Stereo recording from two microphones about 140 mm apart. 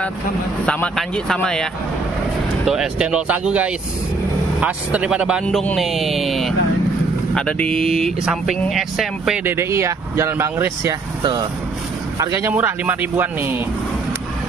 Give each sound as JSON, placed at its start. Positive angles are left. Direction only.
{"t": 0.7, "sound": "speech", "side_deg": 10}
{"t": 9.4, "sound": "speech", "side_deg": -15}
{"t": 12.2, "sound": "speech", "side_deg": -20}